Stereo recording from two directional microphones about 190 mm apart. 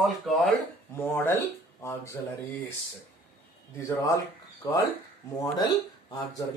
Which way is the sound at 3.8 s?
15° left (ahead or behind).